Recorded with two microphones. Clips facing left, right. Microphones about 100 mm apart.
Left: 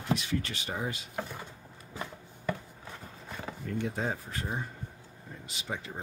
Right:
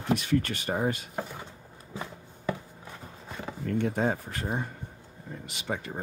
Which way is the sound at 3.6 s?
55° right (ahead or behind).